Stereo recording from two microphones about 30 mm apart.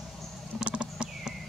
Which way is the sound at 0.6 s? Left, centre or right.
Right.